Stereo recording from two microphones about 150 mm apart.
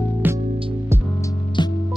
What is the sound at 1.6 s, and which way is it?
Music, 30° left (ahead or behind).